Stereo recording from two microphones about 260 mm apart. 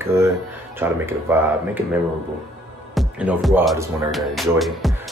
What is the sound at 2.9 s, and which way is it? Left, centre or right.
Speech, centre.